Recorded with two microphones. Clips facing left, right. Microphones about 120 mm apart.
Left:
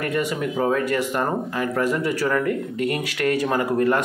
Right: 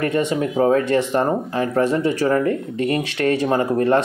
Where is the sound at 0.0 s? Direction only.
25° right (ahead or behind).